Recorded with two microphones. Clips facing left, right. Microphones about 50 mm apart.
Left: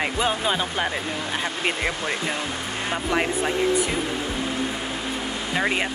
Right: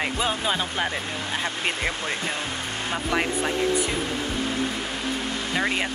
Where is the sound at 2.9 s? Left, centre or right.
Centre.